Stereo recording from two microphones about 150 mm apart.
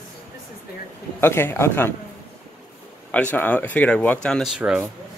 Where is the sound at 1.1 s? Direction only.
15° left (ahead or behind).